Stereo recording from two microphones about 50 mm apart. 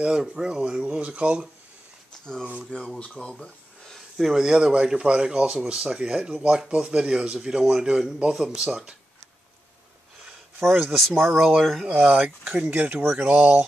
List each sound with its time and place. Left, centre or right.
0.0 s speech: centre
2.3 s speech: centre
3.3 s a sound: centre
4.4 s speech: centre
10.6 s speech: centre; by 13.7 s right